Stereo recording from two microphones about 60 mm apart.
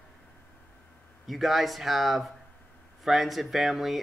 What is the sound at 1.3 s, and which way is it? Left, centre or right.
Speech, centre.